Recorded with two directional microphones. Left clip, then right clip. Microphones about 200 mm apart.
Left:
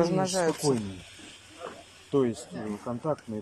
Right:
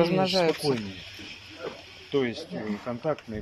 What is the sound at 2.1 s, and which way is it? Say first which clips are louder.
Speech: left 1 dB; 25° left (ahead or behind).